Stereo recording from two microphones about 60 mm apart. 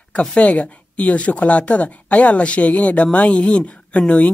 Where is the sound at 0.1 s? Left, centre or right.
Centre.